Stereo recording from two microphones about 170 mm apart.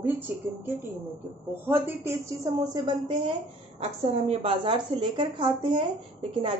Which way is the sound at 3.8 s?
40° right (ahead or behind).